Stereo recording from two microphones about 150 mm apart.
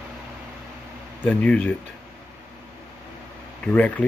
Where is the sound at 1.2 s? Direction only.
10° left (ahead or behind).